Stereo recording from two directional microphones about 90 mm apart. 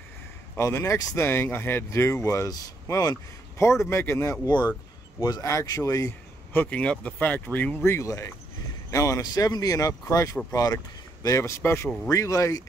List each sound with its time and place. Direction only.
0.6 s speech: 35° left (ahead or behind)
3.9 s speech: 25° left (ahead or behind)
5.2 s a man's voice: 45° left (ahead or behind)
6.5 s speech: 20° left (ahead or behind); by 12.6 s 40° left (ahead or behind)